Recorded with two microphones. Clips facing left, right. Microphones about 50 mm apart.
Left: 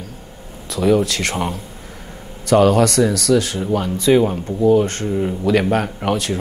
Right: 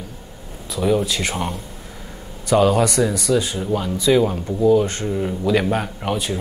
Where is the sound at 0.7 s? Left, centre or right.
Left.